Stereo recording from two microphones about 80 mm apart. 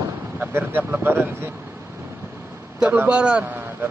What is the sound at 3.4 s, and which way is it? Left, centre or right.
Speech, right.